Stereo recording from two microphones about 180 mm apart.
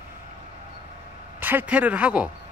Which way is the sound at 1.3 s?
10° right (ahead or behind).